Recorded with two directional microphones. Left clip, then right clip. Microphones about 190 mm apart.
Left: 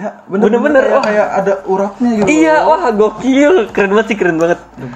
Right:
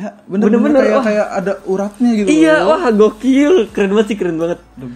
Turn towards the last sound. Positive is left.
turn(degrees=-15)  # may be behind; listen again after turning